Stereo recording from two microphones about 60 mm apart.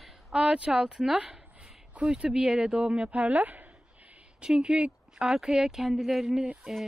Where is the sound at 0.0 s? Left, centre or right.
Centre.